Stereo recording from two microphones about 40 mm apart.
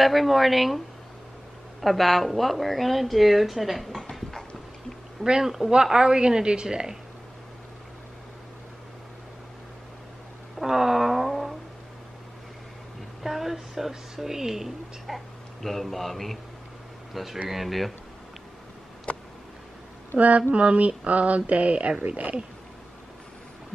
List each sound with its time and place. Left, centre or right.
0.0 s a woman's voice: centre
5.2 s a woman's voice: right
10.6 s a sound: centre
13.2 s speech: centre
20.2 s speech: right